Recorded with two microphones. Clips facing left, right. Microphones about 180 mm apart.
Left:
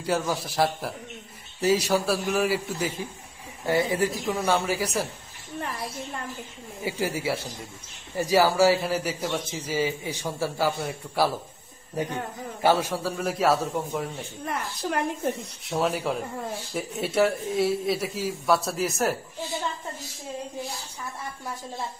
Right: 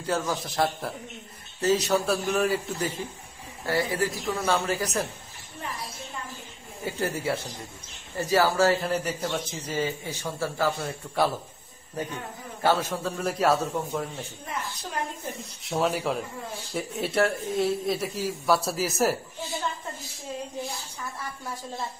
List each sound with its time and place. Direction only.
0.0 s a man's voice: 10° left (ahead or behind)
3.6 s a man's voice: 20° left (ahead or behind)
6.8 s a man's voice: 10° left (ahead or behind)
12.6 s speech: 10° left (ahead or behind)
14.4 s a woman's voice: 65° left (ahead or behind)
15.6 s speech: centre (ahead or behind)